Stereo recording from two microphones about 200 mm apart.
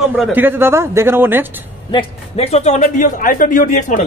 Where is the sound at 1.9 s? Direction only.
30° left (ahead or behind).